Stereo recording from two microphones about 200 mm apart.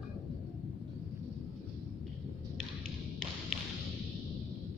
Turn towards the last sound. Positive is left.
turn(degrees=5)  # may be behind; listen again after turning